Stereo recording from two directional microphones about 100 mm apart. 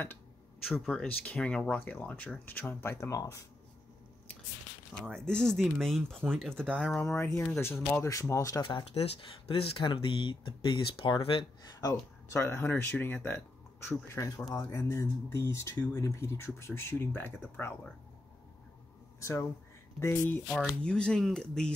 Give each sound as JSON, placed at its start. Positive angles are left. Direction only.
{"t": 0.8, "sound": "speech", "side_deg": 10}
{"t": 5.0, "sound": "speech", "side_deg": 5}
{"t": 7.2, "sound": "speech", "side_deg": 25}
{"t": 8.9, "sound": "speech", "side_deg": 80}
{"t": 11.8, "sound": "speech", "side_deg": 30}
{"t": 19.1, "sound": "a sound", "side_deg": 30}
{"t": 20.0, "sound": "speech", "side_deg": 25}
{"t": 20.8, "sound": "speech", "side_deg": 10}